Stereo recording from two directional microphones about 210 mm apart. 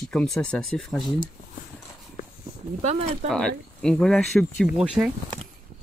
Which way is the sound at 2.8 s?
30° right (ahead or behind).